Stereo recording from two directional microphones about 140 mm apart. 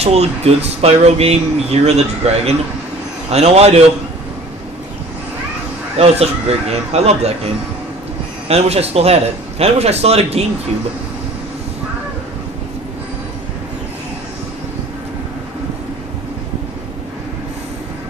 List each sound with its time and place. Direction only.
0.0 s speech: 50° right (ahead or behind)
5.9 s speech: 50° right (ahead or behind)
8.5 s speech: 50° right (ahead or behind)